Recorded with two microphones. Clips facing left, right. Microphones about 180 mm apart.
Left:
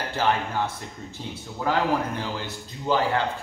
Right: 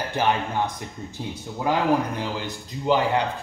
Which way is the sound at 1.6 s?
15° right (ahead or behind).